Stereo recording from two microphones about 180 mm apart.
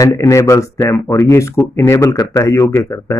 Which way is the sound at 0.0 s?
20° left (ahead or behind).